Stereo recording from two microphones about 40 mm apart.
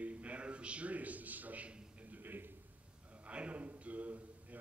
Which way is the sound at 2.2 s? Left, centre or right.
Right.